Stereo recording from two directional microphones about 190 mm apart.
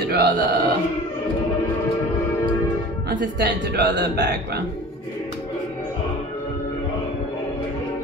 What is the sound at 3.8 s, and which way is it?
Speech, 65° right (ahead or behind).